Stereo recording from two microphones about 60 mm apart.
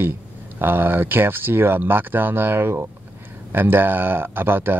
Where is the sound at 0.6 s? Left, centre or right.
Right.